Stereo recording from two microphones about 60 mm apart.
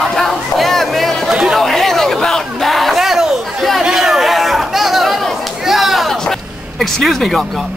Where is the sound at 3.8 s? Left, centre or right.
Centre.